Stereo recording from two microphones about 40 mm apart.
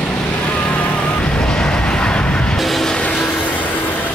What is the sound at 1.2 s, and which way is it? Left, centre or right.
Vehicle, left.